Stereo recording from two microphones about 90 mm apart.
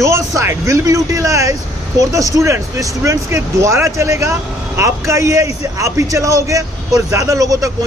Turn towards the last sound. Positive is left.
turn(degrees=-40)  # may be behind; listen again after turning